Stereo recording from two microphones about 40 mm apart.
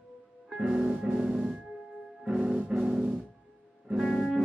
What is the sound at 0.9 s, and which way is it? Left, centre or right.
Music, right.